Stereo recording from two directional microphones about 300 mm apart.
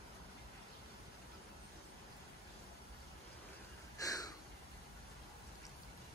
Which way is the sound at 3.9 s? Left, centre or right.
Centre.